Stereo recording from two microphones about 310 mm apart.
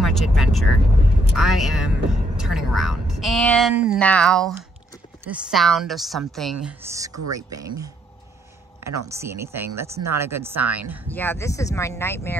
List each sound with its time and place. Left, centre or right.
0.0 s a woman's voice: centre
8.8 s speech: right
9.1 s speech: centre
11.1 s speech: centre